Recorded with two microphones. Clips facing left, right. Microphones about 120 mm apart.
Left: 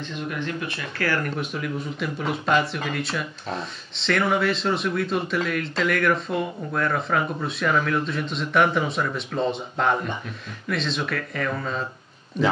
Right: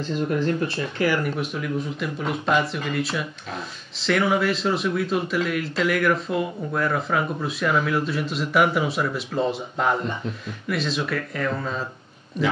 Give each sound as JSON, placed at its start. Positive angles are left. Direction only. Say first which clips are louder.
{"t": 0.0, "sound": "speech", "louder": "right 6 dB", "side_deg": -35}
{"t": 0.9, "sound": "speech", "louder": "right 2 dB", "side_deg": -15}
{"t": 1.3, "sound": "speech", "louder": "right 2 dB", "side_deg": 0}